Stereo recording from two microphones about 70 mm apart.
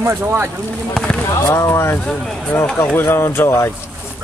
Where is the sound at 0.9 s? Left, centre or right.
Centre.